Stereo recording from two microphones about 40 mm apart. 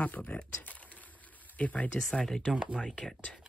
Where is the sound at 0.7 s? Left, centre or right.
Left.